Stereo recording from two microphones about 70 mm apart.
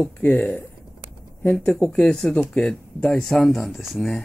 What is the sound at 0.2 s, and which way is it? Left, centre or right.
Speech, left.